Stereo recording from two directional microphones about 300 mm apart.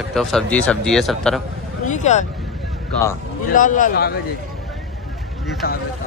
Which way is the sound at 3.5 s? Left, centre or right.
Left.